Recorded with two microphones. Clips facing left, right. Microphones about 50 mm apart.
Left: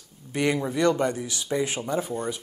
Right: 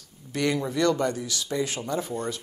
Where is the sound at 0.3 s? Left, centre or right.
Centre.